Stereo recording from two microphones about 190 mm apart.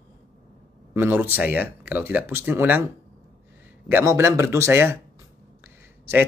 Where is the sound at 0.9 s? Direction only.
10° right (ahead or behind).